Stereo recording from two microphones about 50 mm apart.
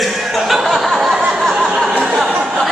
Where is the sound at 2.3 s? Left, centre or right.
Right.